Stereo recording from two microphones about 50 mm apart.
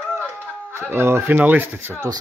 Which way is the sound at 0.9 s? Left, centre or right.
Right.